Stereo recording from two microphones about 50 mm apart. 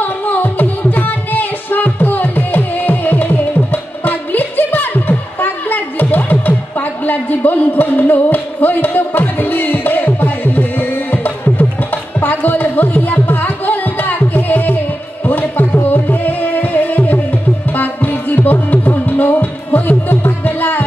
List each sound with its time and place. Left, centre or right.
0.0 s music: left
7.1 s a sound: left
15.2 s music: left